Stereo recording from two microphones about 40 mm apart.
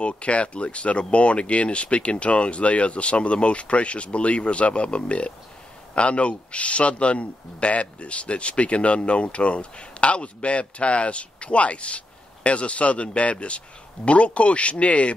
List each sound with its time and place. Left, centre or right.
0.0 s a man's voice: left